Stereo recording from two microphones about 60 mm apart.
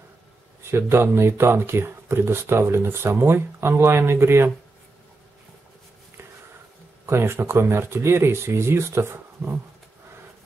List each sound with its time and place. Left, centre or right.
0.7 s speech: right
7.1 s speech: right